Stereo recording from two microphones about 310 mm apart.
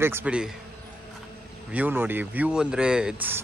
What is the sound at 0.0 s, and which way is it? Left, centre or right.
Speech, centre.